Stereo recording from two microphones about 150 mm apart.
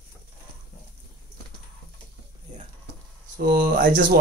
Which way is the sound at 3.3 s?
70° right (ahead or behind).